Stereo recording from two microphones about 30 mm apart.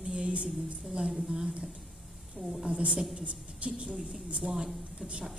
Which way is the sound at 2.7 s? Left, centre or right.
Right.